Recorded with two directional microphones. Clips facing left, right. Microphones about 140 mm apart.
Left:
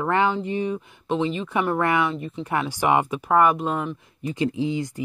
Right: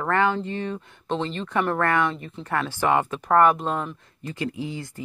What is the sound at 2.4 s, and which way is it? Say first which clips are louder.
Speech: left 1 dB; 15° left (ahead or behind).